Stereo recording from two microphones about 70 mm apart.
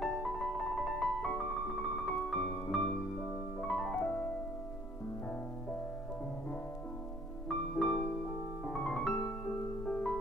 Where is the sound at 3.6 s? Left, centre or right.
Centre.